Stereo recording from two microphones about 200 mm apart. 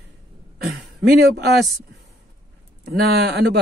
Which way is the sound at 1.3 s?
55° right (ahead or behind).